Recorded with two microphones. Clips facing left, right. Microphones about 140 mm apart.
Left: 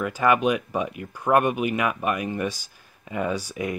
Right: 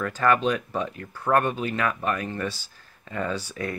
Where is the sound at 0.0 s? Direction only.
10° left (ahead or behind).